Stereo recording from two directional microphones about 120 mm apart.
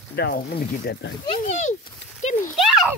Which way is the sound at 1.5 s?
90° left.